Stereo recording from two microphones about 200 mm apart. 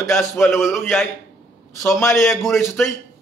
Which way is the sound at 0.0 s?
15° left (ahead or behind).